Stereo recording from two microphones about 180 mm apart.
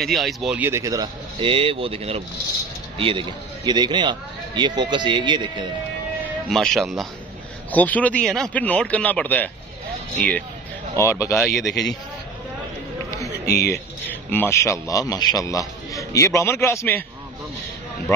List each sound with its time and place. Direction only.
0.0 s a man's voice: centre (ahead or behind); by 5.7 s 25° right (ahead or behind)
6.5 s speech: centre (ahead or behind)
11.0 s speech: 15° left (ahead or behind)
11.4 s speech: centre (ahead or behind)
13.7 s speech: 10° left (ahead or behind)